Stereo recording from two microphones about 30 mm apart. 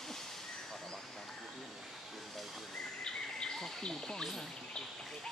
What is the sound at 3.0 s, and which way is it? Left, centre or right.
Bird, left.